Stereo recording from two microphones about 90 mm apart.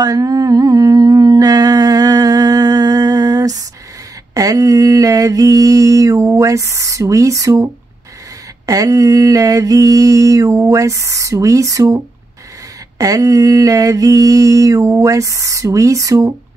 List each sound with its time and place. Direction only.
0.0 s humming: 45° right (ahead or behind)
4.3 s a sound: 40° right (ahead or behind)
8.6 s mantra: 40° right (ahead or behind)